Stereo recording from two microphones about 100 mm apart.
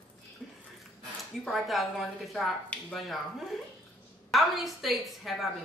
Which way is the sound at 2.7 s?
15° left (ahead or behind).